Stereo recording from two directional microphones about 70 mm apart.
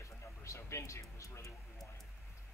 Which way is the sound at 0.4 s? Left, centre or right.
Left.